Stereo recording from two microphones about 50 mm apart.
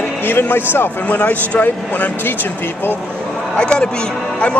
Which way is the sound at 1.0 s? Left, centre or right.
Left.